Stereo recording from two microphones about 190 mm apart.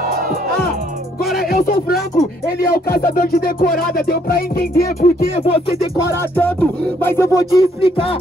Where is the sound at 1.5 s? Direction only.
50° left (ahead or behind).